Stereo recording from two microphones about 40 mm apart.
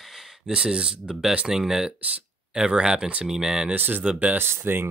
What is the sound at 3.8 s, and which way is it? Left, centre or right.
Speech, right.